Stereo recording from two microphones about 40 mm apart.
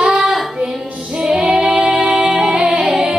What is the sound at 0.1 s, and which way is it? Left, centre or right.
Child singing, centre.